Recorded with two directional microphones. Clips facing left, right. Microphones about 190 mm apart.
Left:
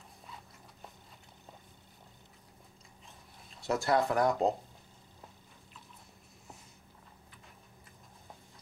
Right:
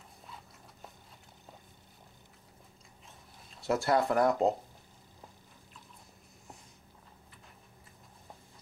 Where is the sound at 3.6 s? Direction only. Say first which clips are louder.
Right 1 dB; centre (ahead or behind).